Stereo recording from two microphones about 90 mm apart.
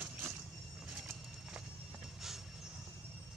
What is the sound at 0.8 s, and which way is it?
Clip-clop, 10° right (ahead or behind).